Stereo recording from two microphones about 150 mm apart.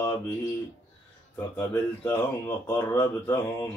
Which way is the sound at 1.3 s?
15° left (ahead or behind).